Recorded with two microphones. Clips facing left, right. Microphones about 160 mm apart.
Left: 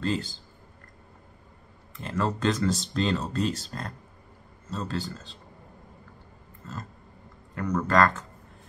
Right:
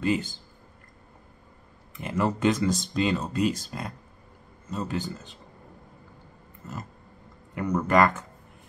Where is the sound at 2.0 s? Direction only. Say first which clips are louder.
Right 2 dB; 15° right (ahead or behind).